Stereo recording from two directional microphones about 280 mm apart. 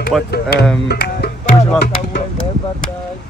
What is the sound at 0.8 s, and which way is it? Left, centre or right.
Music, left.